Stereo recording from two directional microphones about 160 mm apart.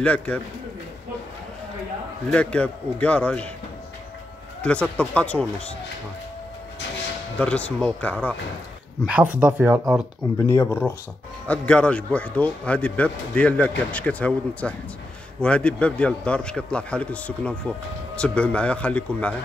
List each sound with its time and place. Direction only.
0.0 s speech: 10° left (ahead or behind)
2.3 s speech: 10° left (ahead or behind)
4.6 s speech: 5° left (ahead or behind)
7.3 s speech: 10° left (ahead or behind)
9.0 s speech: 10° right (ahead or behind)
10.4 s speech: 15° left (ahead or behind)